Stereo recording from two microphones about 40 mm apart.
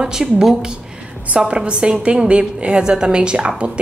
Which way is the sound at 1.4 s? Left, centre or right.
Right.